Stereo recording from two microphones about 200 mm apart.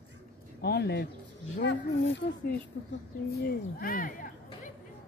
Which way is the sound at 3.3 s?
45° left (ahead or behind).